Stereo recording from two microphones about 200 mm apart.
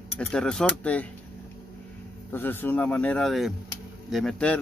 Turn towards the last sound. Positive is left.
turn(degrees=5)  # may be behind; listen again after turning